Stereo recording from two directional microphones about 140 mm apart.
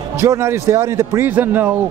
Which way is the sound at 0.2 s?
20° right (ahead or behind).